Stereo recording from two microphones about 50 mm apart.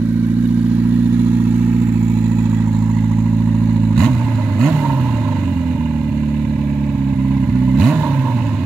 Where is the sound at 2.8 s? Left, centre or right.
Centre.